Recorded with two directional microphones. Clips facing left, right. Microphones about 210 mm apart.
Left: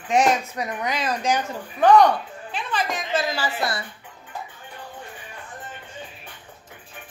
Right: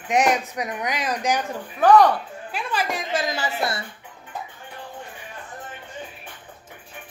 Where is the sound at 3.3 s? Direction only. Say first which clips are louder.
Even; 20° right (ahead or behind).